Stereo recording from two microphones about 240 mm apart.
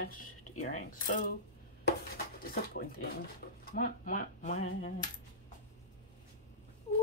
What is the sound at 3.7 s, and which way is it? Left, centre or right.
Speech, left.